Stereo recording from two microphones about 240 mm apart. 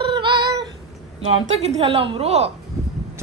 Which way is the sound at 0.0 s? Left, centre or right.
Centre.